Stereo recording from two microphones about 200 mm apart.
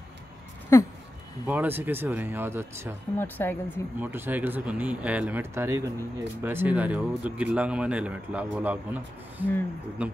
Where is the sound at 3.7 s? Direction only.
10° right (ahead or behind).